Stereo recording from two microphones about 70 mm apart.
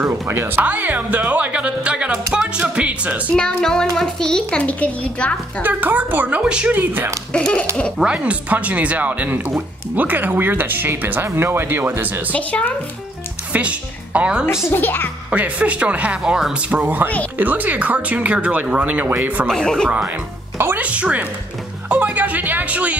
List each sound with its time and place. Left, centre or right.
0.3 s speech: right
0.6 s speech: right
3.3 s a child's voice: centre
5.6 s speech: right
6.8 s speech: right
7.3 s a child's voice: centre
8.0 s speech: centre
12.3 s speech: left
13.5 s speech: centre
14.7 s a child's voice: left
15.3 s speech: right
19.4 s a child's voice: centre
20.5 s speech: right
20.8 s speech: centre